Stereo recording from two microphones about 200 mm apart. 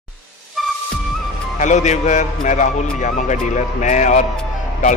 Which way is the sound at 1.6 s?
35° left (ahead or behind).